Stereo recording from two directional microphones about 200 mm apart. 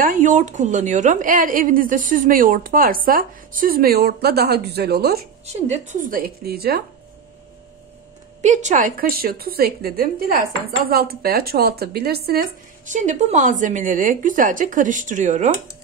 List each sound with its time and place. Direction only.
0.0 s a woman's voice: 40° right (ahead or behind)
5.5 s a woman's voice: 35° right (ahead or behind); by 6.8 s 50° right (ahead or behind)
8.4 s a woman's voice: 35° right (ahead or behind)